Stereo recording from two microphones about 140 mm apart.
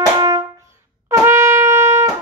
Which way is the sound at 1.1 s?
20° right (ahead or behind).